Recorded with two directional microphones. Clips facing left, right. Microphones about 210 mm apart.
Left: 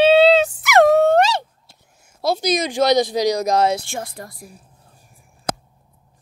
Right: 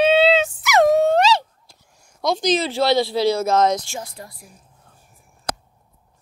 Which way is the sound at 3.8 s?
55° left (ahead or behind).